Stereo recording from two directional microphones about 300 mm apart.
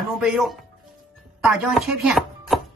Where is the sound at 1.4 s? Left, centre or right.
Centre.